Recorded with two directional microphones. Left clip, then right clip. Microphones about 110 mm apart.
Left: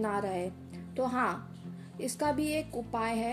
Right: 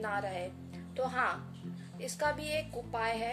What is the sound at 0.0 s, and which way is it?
A woman's voice, 45° left (ahead or behind).